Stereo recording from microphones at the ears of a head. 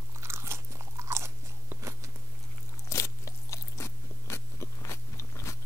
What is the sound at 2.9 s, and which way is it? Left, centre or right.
Biting, left.